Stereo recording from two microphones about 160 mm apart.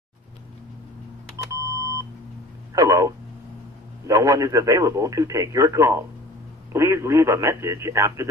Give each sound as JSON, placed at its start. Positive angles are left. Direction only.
{"t": 1.5, "sound": "beep", "side_deg": -20}
{"t": 2.7, "sound": "speech", "side_deg": -20}